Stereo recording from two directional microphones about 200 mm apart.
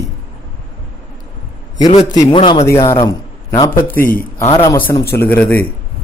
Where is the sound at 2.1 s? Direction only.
25° left (ahead or behind).